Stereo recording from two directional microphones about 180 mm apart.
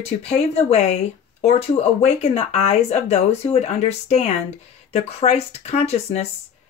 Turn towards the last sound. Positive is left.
turn(degrees=35)  # may be behind; listen again after turning